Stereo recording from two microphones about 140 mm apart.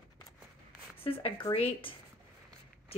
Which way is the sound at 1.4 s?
40° left (ahead or behind).